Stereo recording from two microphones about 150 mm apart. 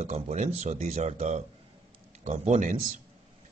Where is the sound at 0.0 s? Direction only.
50° right (ahead or behind).